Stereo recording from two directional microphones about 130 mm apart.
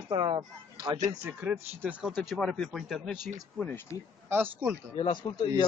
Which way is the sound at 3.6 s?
15° left (ahead or behind).